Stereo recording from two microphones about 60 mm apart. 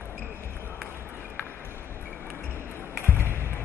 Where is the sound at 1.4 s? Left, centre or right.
Left.